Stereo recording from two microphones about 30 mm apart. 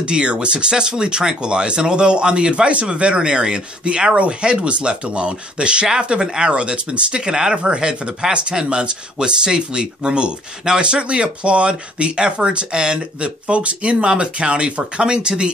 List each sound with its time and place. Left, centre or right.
0.0 s speech: right